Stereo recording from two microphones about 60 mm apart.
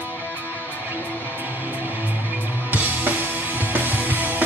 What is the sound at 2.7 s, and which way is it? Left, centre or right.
Music, right.